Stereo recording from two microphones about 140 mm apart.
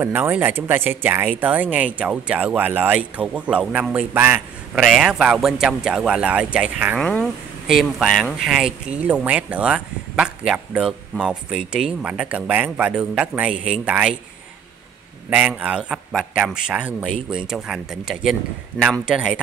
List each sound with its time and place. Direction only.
0.0 s a man's voice: 15° right (ahead or behind)
7.0 s a man's voice: 5° left (ahead or behind)
15.2 s a man's voice: 10° right (ahead or behind)